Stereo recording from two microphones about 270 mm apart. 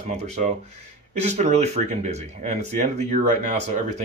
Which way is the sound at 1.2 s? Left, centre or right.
Right.